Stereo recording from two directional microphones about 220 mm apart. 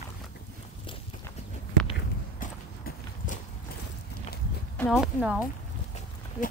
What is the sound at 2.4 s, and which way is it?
Clip-clop, 35° left (ahead or behind).